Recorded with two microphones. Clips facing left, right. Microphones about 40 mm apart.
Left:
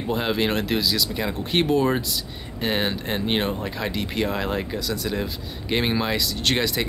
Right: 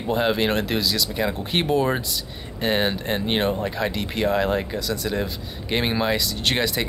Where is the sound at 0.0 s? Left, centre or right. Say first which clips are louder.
Right 2 dB; centre.